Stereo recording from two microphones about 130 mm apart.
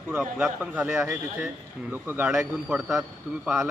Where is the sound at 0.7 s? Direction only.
20° right (ahead or behind).